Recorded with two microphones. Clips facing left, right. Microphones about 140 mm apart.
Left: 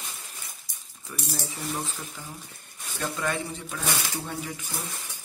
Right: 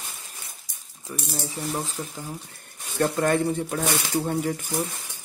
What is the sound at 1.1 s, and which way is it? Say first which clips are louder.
Speech: right 3 dB; 30° right (ahead or behind).